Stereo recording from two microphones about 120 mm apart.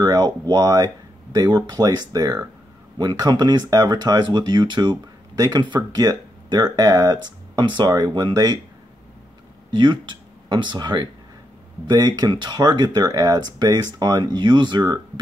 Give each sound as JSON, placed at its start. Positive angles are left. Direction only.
{"t": 0.0, "sound": "speech", "side_deg": -35}
{"t": 9.7, "sound": "speech", "side_deg": -40}